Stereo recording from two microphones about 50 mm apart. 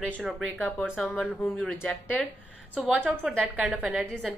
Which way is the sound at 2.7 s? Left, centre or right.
Right.